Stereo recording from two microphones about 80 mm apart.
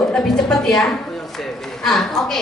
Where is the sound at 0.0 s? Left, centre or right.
Centre.